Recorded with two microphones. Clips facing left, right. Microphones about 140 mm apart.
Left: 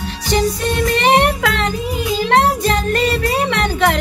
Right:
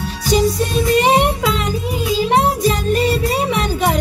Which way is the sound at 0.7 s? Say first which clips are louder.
Right 1 dB; 75° left (ahead or behind).